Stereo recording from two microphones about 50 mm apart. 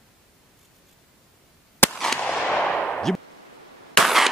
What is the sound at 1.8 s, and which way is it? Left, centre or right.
Fireworks, left.